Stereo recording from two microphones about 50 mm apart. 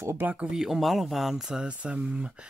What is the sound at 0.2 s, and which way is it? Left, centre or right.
Speech, right.